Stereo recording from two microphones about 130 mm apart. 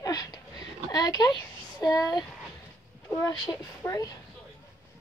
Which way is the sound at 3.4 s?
25° left (ahead or behind).